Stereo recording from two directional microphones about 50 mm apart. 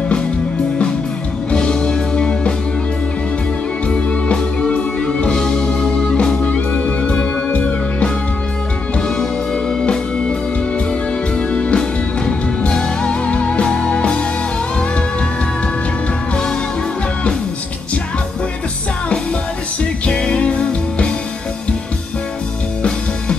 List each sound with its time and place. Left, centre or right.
1.5 s music: centre
3.8 s music: left
5.0 s music: centre
9.1 s music: centre
11.3 s music: left
19.8 s music: left